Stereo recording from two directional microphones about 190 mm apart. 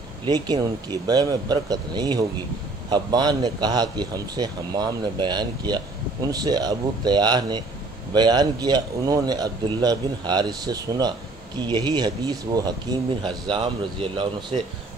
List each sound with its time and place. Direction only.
0.2 s a man's voice: 20° right (ahead or behind)